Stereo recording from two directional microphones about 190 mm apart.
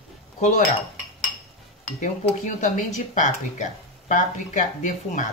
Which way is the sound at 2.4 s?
40° left (ahead or behind).